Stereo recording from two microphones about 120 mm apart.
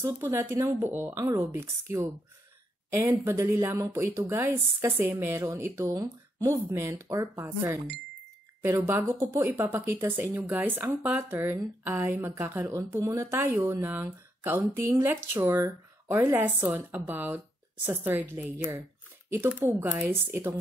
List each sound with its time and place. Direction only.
0.0 s a woman's voice: 20° right (ahead or behind)